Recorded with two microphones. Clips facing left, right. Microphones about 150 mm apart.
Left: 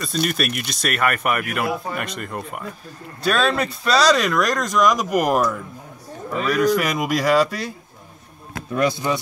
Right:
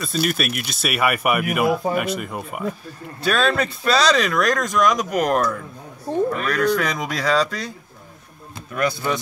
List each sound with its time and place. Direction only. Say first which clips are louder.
0.0 s speech: even; centre (ahead or behind)
8.7 s speech: left 2 dB; 15° left (ahead or behind)